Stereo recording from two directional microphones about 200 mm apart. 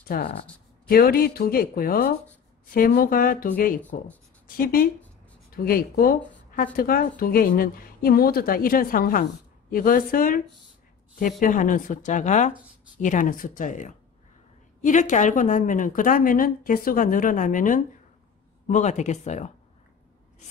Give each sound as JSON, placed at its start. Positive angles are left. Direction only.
{"t": 0.1, "sound": "a woman's voice", "side_deg": 45}